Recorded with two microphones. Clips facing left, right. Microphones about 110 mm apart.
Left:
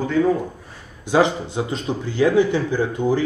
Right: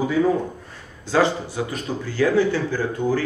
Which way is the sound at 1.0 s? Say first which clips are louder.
Left 2 dB; 20° left (ahead or behind).